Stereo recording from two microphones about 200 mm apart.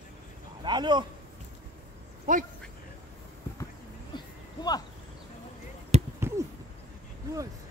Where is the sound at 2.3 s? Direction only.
40° right (ahead or behind).